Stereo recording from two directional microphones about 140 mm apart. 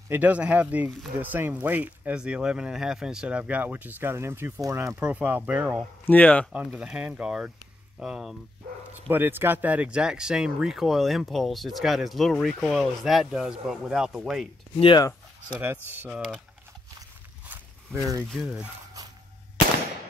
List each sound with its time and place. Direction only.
0.1 s speech: 10° right (ahead or behind)
6.0 s speech: 10° left (ahead or behind)
6.5 s speech: 5° right (ahead or behind)
9.1 s speech: 15° right (ahead or behind)
14.8 s speech: 35° left (ahead or behind)
15.4 s speech: 10° right (ahead or behind)
18.3 s speech: centre (ahead or behind)